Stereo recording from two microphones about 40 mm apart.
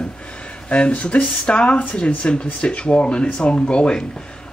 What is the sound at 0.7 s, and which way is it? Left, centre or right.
Speech, left.